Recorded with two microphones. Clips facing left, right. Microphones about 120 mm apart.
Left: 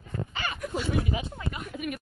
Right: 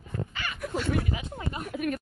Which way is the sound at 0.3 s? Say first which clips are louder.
Left 3 dB; 30° left (ahead or behind).